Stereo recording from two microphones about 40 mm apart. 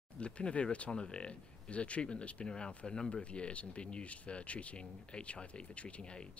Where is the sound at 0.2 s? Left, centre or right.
Left.